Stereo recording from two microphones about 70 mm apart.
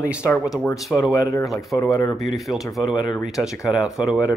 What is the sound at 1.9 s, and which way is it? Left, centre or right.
Speech, left.